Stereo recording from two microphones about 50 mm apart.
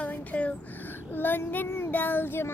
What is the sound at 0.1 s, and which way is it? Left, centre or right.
Child singing, left.